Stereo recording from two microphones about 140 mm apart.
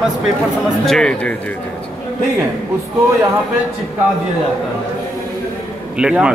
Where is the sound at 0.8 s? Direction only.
5° left (ahead or behind).